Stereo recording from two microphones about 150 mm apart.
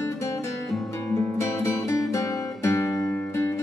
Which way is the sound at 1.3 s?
20° left (ahead or behind).